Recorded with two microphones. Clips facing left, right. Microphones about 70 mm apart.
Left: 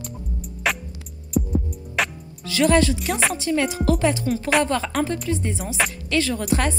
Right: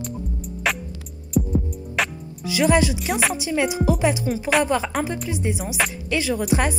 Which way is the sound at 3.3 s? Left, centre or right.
Centre.